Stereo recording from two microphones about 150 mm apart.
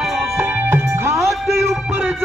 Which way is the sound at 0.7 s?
15° right (ahead or behind).